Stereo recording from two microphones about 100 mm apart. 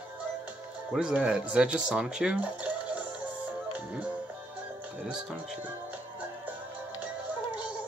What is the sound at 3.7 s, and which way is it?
Music, 15° right (ahead or behind).